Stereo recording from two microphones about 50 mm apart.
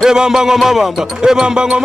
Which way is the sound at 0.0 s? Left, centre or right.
Centre.